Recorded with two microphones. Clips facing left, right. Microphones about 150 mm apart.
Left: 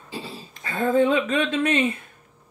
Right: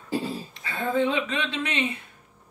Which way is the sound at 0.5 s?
45° left (ahead or behind).